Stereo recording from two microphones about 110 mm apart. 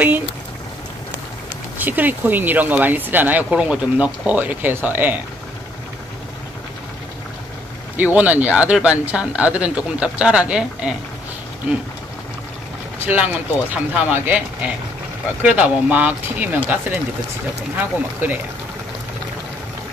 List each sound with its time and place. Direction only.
1.8 s speech: 15° right (ahead or behind)
8.0 s speech: 15° right (ahead or behind)
13.0 s speech: 15° right (ahead or behind)